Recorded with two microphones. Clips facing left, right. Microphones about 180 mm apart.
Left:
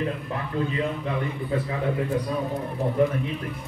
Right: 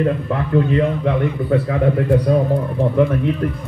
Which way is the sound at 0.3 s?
70° right (ahead or behind).